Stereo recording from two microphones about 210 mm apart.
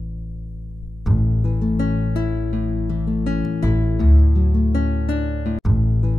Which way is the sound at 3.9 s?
Centre (ahead or behind).